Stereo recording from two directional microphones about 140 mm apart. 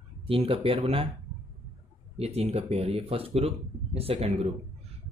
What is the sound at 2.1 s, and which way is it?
Speech, 45° right (ahead or behind).